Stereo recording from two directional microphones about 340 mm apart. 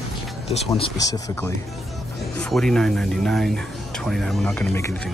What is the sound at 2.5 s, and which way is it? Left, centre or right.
Speech, centre.